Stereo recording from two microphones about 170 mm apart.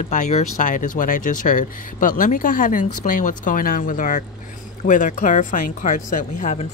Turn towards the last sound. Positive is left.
turn(degrees=45)  # may be behind; listen again after turning